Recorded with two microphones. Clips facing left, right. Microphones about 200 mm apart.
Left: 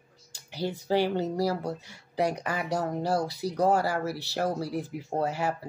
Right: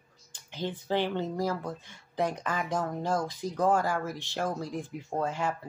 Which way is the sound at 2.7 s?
40° left (ahead or behind).